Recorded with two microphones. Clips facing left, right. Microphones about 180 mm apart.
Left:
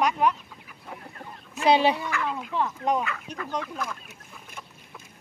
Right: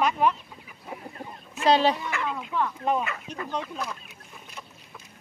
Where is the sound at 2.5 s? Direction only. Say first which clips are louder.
Even; 30° left (ahead or behind).